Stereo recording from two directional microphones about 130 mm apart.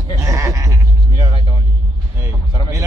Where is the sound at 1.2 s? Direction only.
40° left (ahead or behind).